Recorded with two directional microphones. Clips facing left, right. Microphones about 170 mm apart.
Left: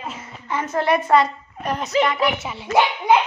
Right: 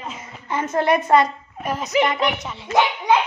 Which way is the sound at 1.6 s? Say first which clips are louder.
Left 1 dB; centre (ahead or behind).